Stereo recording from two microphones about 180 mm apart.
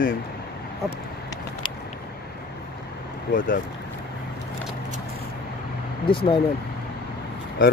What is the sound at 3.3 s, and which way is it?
Speech, 50° left (ahead or behind).